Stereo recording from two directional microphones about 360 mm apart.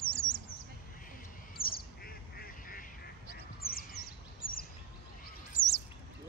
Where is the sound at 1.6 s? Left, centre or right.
Left.